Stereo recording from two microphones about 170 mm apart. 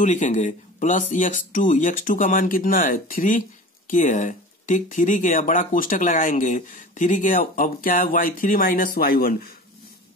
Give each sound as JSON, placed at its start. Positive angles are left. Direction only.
{"t": 0.0, "sound": "speech", "side_deg": 45}